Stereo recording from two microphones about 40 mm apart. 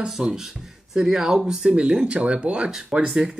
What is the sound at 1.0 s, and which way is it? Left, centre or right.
Speech, centre.